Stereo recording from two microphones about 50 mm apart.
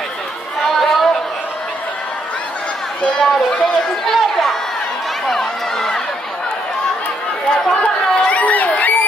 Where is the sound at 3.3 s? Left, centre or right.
Centre.